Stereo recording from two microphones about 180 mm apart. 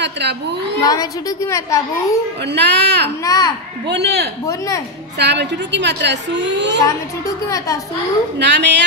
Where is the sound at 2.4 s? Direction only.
70° right (ahead or behind).